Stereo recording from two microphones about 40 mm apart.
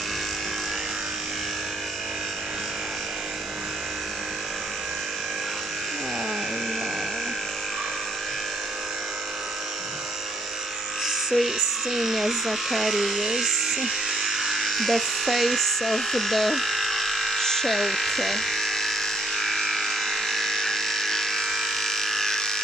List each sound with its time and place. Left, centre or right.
11.1 s electric shaver: centre